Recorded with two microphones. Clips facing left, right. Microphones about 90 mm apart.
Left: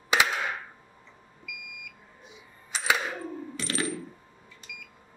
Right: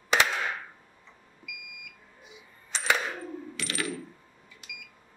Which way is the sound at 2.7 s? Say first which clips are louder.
Even; 5° left (ahead or behind).